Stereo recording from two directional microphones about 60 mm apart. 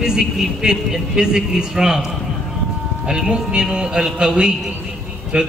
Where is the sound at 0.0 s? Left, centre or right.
Centre.